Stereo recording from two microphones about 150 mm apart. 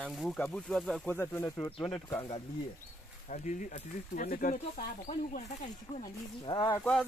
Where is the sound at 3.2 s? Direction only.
55° left (ahead or behind).